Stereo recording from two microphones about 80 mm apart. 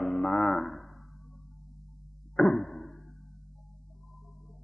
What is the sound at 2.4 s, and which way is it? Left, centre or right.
Arrow, centre.